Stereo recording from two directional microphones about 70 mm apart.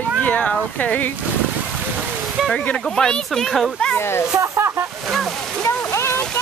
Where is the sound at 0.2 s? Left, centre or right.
Left.